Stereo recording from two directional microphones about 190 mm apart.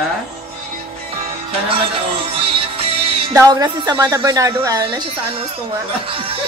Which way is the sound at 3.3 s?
20° right (ahead or behind).